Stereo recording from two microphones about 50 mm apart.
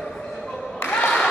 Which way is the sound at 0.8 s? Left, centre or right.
Left.